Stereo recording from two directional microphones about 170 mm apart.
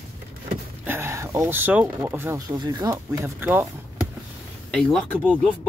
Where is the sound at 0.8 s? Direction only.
15° right (ahead or behind).